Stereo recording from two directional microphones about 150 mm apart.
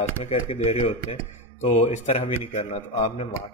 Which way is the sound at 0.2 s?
40° left (ahead or behind).